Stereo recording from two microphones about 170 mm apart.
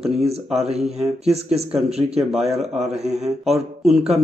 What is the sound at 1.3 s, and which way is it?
Speech, 40° right (ahead or behind).